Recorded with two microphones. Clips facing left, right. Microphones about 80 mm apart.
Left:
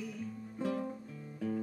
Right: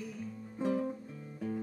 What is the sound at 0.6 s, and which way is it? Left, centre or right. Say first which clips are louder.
Music: right 3 dB; centre.